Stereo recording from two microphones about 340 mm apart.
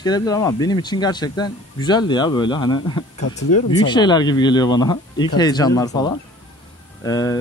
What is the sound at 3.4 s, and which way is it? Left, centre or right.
Speech, left.